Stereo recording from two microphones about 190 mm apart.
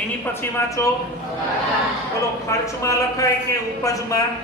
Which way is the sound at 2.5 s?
15° left (ahead or behind).